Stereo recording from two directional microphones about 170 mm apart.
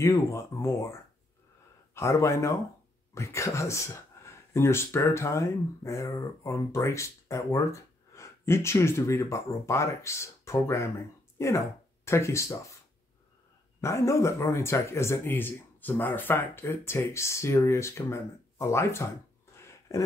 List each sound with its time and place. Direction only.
0.0 s speech: 15° left (ahead or behind)
2.0 s speech: 15° left (ahead or behind)
13.7 s speech: 15° left (ahead or behind)
19.5 s a sound: 15° left (ahead or behind)